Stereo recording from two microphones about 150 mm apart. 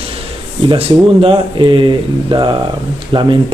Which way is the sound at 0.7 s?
35° right (ahead or behind).